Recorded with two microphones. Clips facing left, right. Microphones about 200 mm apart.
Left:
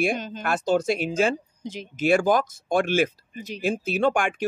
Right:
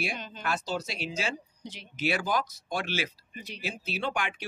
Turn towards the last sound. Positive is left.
turn(degrees=50)  # may be behind; listen again after turning